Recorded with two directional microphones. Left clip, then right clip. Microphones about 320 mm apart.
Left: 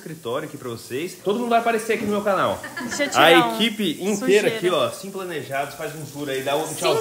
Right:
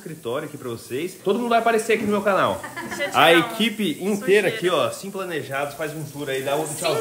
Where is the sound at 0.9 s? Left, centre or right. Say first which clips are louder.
Right 1 dB; centre.